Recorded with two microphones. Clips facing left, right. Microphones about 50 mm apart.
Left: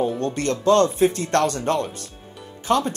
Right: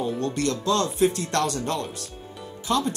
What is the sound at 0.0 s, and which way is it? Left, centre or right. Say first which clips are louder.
Speech: left 3 dB; left.